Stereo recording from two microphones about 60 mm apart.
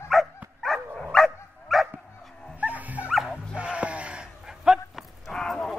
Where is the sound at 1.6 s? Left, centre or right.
Centre.